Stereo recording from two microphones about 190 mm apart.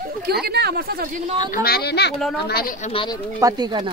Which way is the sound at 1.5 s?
55° left (ahead or behind).